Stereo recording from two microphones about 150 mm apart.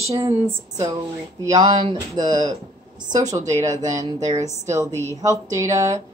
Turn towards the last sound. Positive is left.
turn(degrees=-20)  # may be behind; listen again after turning